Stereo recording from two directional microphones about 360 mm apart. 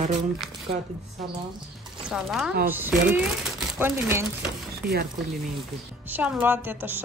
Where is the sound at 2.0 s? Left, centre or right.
Centre.